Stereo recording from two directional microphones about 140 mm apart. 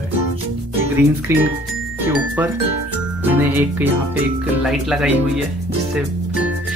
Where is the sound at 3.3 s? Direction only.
15° right (ahead or behind).